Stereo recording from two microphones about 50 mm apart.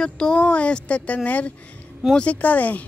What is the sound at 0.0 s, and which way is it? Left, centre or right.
A woman's voice, centre.